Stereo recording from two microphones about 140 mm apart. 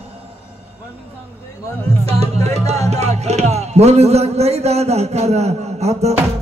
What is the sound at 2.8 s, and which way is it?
Speech, 50° right (ahead or behind).